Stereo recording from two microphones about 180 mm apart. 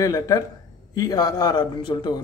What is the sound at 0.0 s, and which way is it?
Speech, 20° left (ahead or behind).